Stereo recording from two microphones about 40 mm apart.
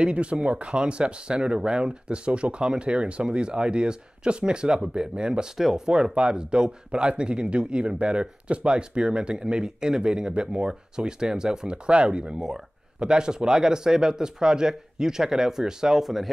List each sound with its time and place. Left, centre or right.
0.0 s speech: right